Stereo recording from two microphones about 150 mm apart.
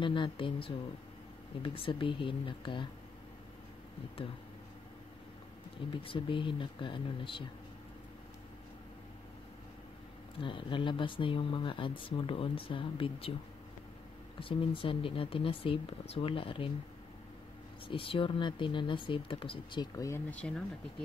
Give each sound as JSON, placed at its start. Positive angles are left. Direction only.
{"t": 0.0, "sound": "speech", "side_deg": 35}
{"t": 6.0, "sound": "speech", "side_deg": 35}
{"t": 10.4, "sound": "speech", "side_deg": 35}
{"t": 14.4, "sound": "speech", "side_deg": 35}
{"t": 17.8, "sound": "speech", "side_deg": 35}
{"t": 20.2, "sound": "speech", "side_deg": 10}